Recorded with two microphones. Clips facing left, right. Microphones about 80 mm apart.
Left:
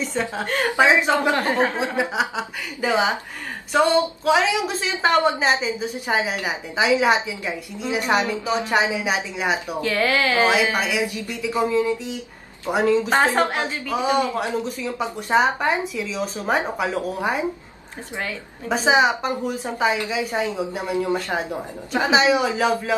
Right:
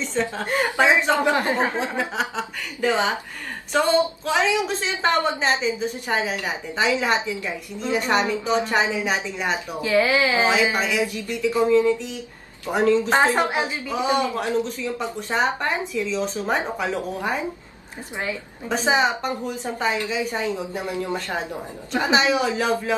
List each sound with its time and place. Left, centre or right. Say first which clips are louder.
0.0 s speech: even; centre
1.3 s speech: left 1 dB; centre
1.8 s a woman's voice: left 2 dB; centre
9.8 s speech: right 4 dB; centre
10.7 s speech: even; centre
13.4 s speech: left 1 dB; centre
14.0 s speech: left 1 dB; centre
18.7 s speech: left 3 dB; centre
22.1 s a woman's voice: left 2 dB; centre